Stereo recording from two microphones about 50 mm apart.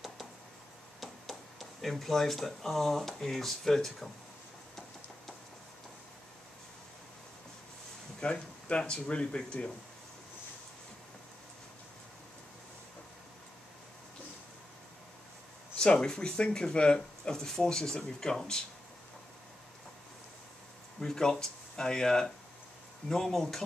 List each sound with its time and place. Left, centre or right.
1.0 s speech: centre
8.2 s speech: left
15.8 s speech: centre
21.0 s speech: centre